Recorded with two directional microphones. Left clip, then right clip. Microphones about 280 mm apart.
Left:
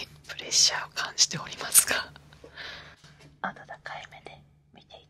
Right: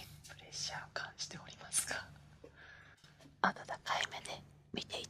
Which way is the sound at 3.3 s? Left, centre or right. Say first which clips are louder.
Even; centre.